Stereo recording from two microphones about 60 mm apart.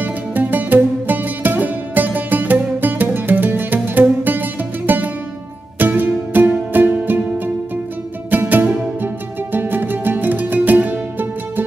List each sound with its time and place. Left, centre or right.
0.0 s music: right
8.3 s music: right